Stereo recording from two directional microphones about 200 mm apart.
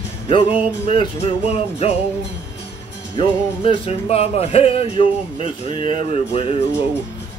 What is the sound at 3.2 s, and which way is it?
Music, 25° left (ahead or behind).